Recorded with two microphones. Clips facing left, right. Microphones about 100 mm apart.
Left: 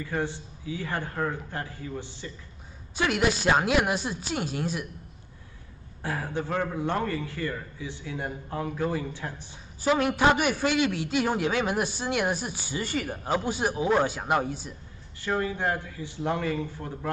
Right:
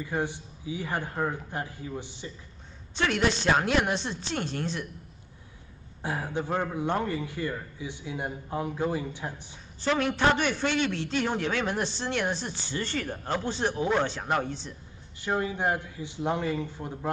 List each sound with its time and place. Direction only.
0.0 s a man's voice: 15° right (ahead or behind)
3.0 s a man's voice: 5° left (ahead or behind)
6.0 s a man's voice: 15° right (ahead or behind)
9.8 s a man's voice: 10° left (ahead or behind)
15.1 s a man's voice: 20° right (ahead or behind)